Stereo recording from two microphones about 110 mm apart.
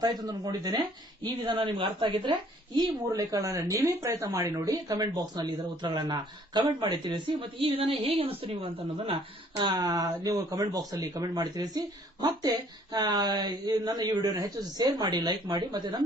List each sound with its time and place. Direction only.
0.0 s speech: 35° right (ahead or behind)
3.1 s speech: 30° right (ahead or behind); by 9.2 s 60° right (ahead or behind)
9.6 s speech: 40° right (ahead or behind)